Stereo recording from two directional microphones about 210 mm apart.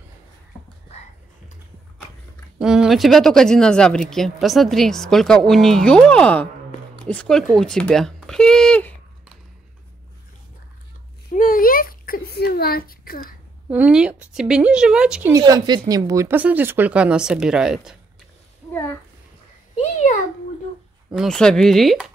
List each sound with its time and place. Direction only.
2.6 s speech: 5° right (ahead or behind)
11.3 s a sound: 40° left (ahead or behind)
13.7 s speech: 5° right (ahead or behind)
15.3 s speech: 20° right (ahead or behind); by 17.9 s 5° right (ahead or behind)
18.7 s a child's voice: 10° left (ahead or behind)
19.8 s a sound: 35° left (ahead or behind)
21.1 s speech: centre (ahead or behind)